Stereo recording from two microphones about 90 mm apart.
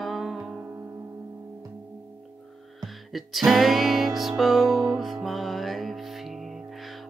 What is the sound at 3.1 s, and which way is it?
Music, centre (ahead or behind).